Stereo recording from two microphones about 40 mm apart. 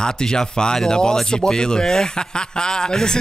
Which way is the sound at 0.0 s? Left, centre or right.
Centre.